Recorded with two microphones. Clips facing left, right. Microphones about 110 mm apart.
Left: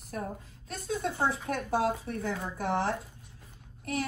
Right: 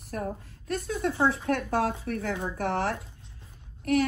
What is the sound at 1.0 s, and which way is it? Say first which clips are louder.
Speech: right 5 dB; 65° right (ahead or behind).